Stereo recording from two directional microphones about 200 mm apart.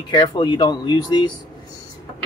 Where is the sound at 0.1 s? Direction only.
20° left (ahead or behind).